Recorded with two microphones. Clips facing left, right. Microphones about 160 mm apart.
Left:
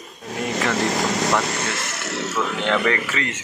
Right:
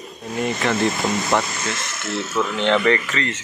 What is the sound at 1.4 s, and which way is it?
Speech, 70° left (ahead or behind).